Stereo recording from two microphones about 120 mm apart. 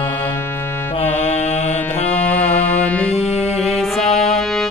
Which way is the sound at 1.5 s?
65° left (ahead or behind).